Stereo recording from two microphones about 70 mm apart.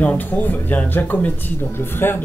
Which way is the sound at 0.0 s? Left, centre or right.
Left.